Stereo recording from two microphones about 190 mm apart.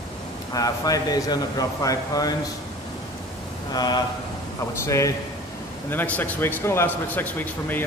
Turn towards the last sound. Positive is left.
turn(degrees=10)  # may be behind; listen again after turning